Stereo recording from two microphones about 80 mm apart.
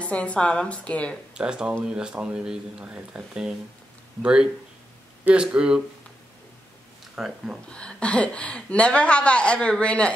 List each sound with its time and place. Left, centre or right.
0.0 s a woman's voice: centre
1.3 s speech: centre
7.2 s speech: centre
7.7 s a woman's voice: centre